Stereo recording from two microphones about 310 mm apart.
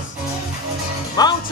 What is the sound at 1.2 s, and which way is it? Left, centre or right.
Speech, centre.